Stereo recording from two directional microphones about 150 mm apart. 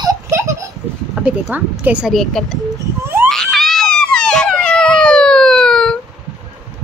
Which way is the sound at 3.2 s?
Centre (ahead or behind).